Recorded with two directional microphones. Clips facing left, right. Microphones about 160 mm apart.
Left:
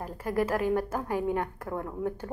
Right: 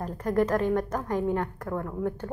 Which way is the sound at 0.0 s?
10° left (ahead or behind).